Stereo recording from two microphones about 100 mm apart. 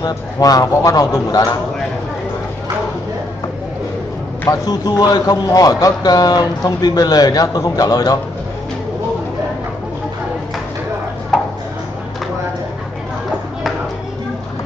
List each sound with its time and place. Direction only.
0.0 s a man's voice: 40° left (ahead or behind)
4.5 s a man's voice: 40° left (ahead or behind)